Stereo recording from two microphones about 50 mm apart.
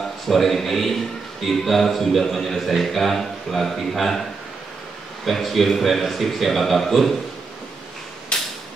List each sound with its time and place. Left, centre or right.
0.0 s a man's voice: centre
5.2 s a man's voice: centre
8.3 s creak: centre